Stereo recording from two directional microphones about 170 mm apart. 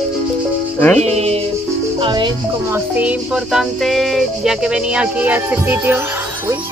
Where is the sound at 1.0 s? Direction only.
40° right (ahead or behind).